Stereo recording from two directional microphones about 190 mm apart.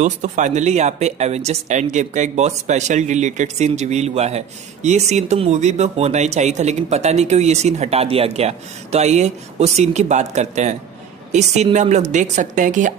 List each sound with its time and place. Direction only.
0.0 s speech: 40° right (ahead or behind)